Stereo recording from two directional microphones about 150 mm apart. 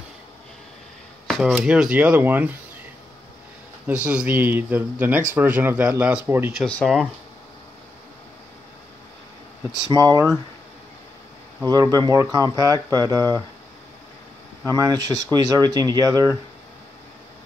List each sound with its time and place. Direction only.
1.2 s a sound: centre (ahead or behind)
1.5 s speech: 5° right (ahead or behind)
3.8 s speech: 10° right (ahead or behind)
6.6 s speech: 5° left (ahead or behind)
9.7 s speech: 25° right (ahead or behind)
11.6 s speech: 25° right (ahead or behind)
14.7 s speech: 25° right (ahead or behind)